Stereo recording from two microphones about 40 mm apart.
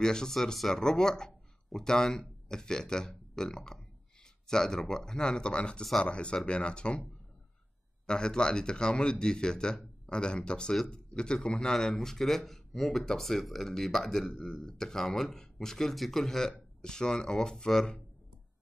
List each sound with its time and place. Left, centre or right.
0.0 s speech: centre
0.3 s speech: centre; by 7.0 s left
8.1 s speech: left